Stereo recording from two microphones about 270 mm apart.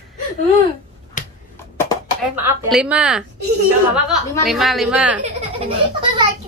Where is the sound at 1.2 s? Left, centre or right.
Left.